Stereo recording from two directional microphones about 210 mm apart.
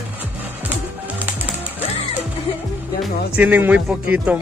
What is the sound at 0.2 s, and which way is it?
Music, 10° right (ahead or behind).